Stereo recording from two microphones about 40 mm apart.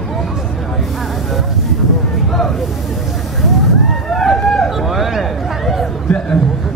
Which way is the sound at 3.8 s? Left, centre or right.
Centre.